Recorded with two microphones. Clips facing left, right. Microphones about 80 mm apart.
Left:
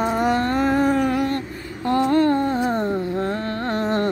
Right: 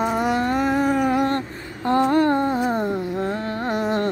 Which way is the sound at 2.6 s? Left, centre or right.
Centre.